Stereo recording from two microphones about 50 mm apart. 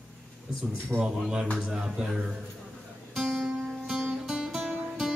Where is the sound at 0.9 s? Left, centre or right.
Centre.